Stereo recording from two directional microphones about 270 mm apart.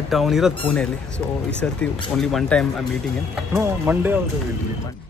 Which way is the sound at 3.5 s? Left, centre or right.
Centre.